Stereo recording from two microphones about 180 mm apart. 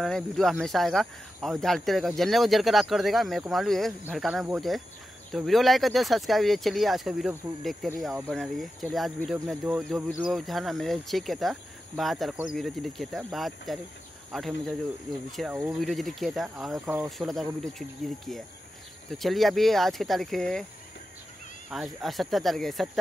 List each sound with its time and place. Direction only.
0.0 s speech: centre (ahead or behind)
21.6 s speech: centre (ahead or behind)